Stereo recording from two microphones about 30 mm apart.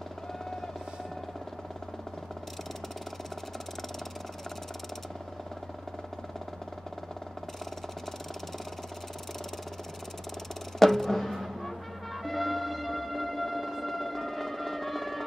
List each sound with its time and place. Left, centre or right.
10.8 s music: centre